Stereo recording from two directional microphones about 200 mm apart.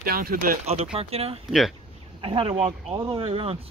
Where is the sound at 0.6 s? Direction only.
30° right (ahead or behind).